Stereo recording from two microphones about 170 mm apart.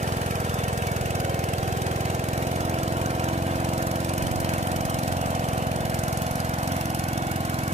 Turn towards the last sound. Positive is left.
turn(degrees=-40)  # may be behind; listen again after turning